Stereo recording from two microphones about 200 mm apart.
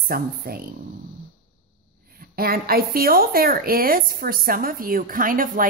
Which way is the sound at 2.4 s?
50° right (ahead or behind).